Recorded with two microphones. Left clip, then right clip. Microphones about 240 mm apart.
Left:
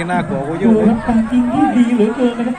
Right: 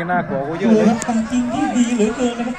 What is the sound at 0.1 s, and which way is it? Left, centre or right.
A man's voice, right.